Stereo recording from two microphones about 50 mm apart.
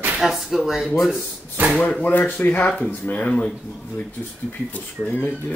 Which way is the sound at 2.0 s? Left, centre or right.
Left.